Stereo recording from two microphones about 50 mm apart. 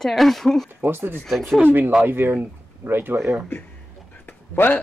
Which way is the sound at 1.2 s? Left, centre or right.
Centre.